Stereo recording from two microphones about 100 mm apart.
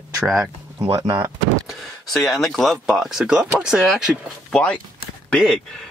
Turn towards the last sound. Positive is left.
turn(degrees=5)  # may be behind; listen again after turning